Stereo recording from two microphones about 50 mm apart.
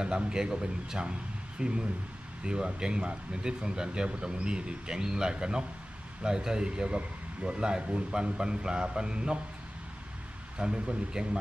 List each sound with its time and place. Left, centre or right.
0.0 s speech: centre
10.6 s speech: centre